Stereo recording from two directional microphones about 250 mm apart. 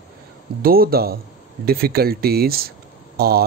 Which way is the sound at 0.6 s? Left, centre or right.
Right.